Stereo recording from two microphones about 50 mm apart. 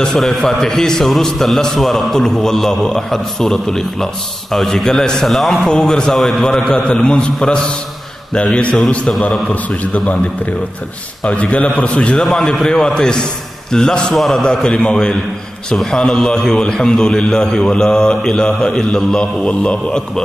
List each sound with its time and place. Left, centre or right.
0.2 s a man's voice: centre
5.7 s a man's voice: centre
12.2 s a man's voice: centre